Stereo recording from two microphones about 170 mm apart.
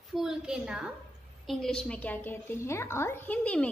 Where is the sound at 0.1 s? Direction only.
5° right (ahead or behind).